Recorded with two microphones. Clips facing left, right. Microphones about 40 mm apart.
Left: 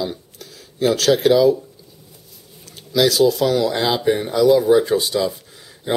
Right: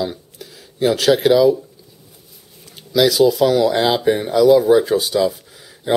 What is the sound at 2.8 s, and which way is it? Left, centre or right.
Speech, centre.